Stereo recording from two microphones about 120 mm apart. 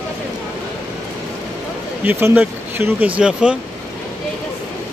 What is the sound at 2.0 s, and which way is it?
Speech, 15° right (ahead or behind).